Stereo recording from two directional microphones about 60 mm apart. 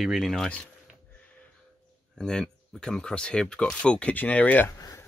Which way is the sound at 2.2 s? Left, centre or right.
Centre.